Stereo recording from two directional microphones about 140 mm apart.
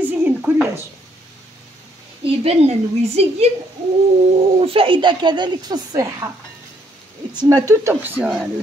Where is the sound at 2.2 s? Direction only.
45° right (ahead or behind).